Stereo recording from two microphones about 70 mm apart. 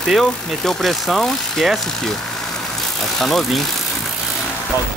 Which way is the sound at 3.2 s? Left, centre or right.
Centre.